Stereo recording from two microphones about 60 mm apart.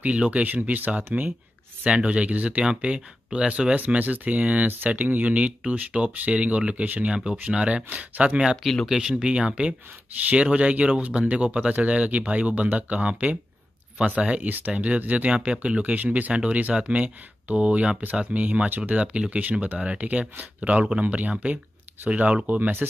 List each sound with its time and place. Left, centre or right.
0.0 s speech: right
1.8 s speech: centre
8.6 s speech: centre
9.1 s speech: centre
22.6 s speech: right